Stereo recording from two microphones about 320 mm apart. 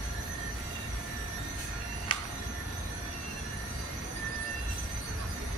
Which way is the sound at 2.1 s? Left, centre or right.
Centre.